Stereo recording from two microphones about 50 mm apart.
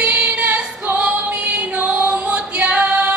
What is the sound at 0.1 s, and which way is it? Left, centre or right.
Female singing, right.